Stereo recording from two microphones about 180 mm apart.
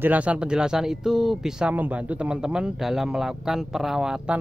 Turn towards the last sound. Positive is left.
turn(degrees=-5)  # may be behind; listen again after turning